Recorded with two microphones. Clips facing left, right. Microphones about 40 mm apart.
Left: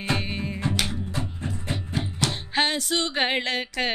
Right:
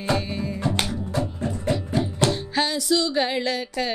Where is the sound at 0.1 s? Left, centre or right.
Left.